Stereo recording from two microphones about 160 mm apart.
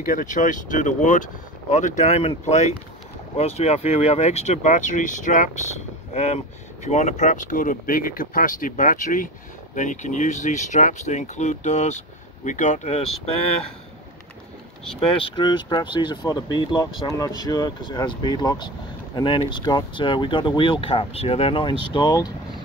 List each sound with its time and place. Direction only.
0.0 s speech: 55° left (ahead or behind)
14.9 s speech: 35° left (ahead or behind)